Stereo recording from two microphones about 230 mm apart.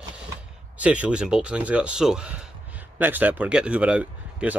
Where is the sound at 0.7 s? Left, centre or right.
Centre.